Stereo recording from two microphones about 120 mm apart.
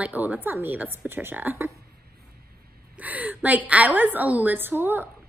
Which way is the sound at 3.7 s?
15° right (ahead or behind).